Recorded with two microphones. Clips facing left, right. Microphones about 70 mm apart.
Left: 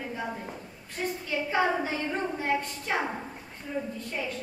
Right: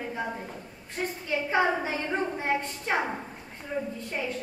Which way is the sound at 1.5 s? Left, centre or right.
Centre.